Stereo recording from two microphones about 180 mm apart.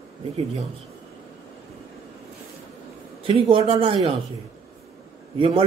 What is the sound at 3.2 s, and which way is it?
Speech, 30° right (ahead or behind).